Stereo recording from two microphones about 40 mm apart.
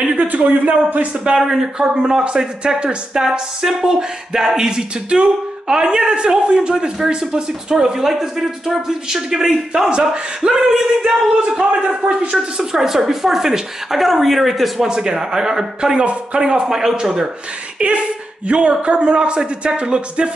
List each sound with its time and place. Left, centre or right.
0.3 s speech: right
1.4 s speech: centre
9.8 s speech: right
11.8 s speech: right
12.5 s speech: centre
14.8 s speech: centre
17.8 s speech: right